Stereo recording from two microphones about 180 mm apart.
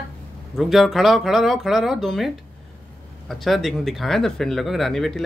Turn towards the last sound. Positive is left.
turn(degrees=0)  # may be behind; listen again after turning